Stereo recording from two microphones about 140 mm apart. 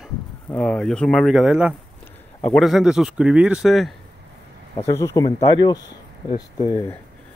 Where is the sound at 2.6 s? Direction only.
5° right (ahead or behind).